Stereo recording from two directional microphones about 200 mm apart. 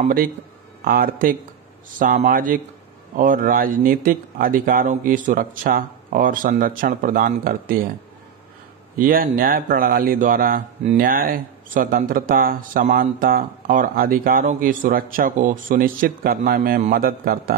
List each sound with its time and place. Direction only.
0.0 s speech: 45° right (ahead or behind)
8.9 s speech: 45° right (ahead or behind)